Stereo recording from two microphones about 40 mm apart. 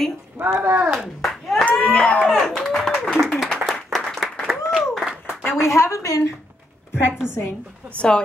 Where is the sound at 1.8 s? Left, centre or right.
Left.